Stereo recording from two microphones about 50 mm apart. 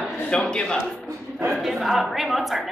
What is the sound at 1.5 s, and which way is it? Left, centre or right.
A woman's voice, centre.